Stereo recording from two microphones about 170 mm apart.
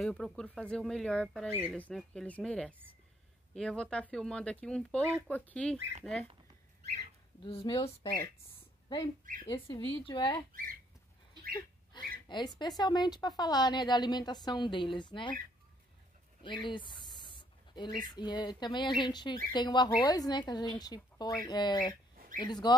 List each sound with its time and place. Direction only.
0.0 s speech: 5° left (ahead or behind)
7.4 s speech: 30° left (ahead or behind)
10.5 s speech: 55° right (ahead or behind)
11.9 s speech: 25° left (ahead or behind)
16.4 s speech: 30° left (ahead or behind)